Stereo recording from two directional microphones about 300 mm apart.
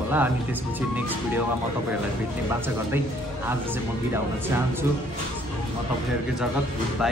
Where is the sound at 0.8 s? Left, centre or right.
Centre.